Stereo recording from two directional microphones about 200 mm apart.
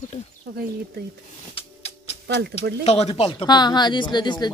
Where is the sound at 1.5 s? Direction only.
30° left (ahead or behind).